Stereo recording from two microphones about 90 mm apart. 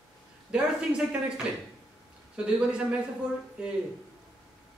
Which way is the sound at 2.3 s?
10° right (ahead or behind).